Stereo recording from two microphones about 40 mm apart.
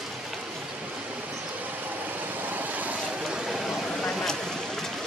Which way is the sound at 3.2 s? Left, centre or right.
Centre.